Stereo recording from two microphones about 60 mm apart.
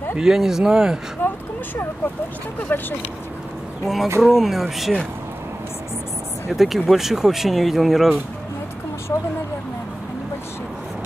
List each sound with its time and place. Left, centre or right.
0.2 s speech: centre
1.2 s a sound: left
2.7 s speech: left
3.8 s speech: centre
6.5 s speech: centre